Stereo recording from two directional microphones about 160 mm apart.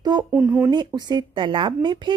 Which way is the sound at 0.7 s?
25° right (ahead or behind).